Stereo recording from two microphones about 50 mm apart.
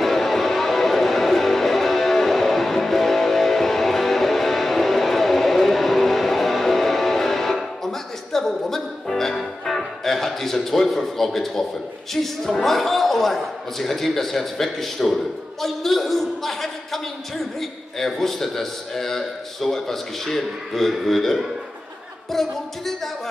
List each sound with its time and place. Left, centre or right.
0.0 s music: centre
12.1 s speech: centre